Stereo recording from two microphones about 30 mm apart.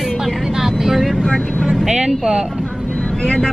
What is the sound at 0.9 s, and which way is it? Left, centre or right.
Speech, centre.